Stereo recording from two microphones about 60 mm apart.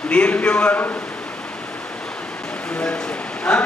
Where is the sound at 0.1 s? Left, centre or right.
Left.